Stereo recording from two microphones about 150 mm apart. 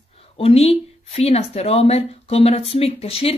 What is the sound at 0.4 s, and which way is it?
Speech, 45° left (ahead or behind).